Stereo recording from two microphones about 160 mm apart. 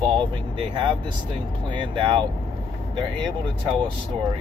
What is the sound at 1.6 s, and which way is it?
Speech, 30° right (ahead or behind).